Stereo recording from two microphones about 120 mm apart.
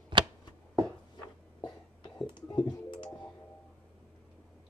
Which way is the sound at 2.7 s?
40° left (ahead or behind).